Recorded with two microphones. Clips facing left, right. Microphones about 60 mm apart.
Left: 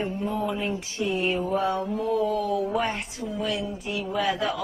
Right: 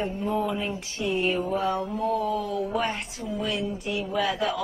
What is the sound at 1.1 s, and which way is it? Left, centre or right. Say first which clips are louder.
Speech: right 1 dB; centre.